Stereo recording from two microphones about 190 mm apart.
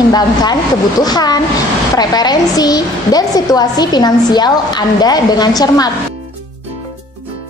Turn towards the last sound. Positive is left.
turn(degrees=20)  # may be behind; listen again after turning